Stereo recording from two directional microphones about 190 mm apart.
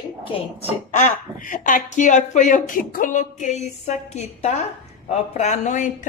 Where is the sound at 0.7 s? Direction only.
40° left (ahead or behind).